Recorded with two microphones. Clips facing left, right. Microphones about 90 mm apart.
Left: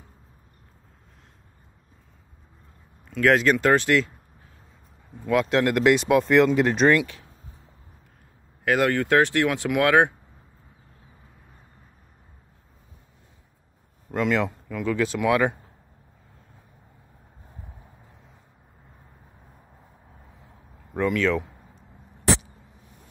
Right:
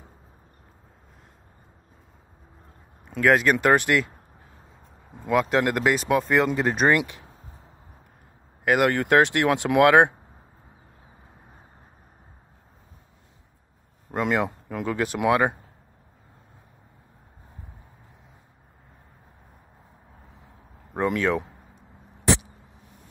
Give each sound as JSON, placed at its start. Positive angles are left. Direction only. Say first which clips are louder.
{"t": 3.3, "sound": "speech", "louder": "even", "side_deg": -10}
{"t": 5.3, "sound": "speech", "louder": "left 1 dB", "side_deg": -5}
{"t": 6.9, "sound": "speech", "louder": "left 1 dB", "side_deg": -15}
{"t": 8.6, "sound": "speech", "louder": "right 1 dB", "side_deg": -15}
{"t": 14.1, "sound": "speech", "louder": "left 1 dB", "side_deg": -20}
{"t": 20.9, "sound": "speech", "louder": "left 1 dB", "side_deg": -20}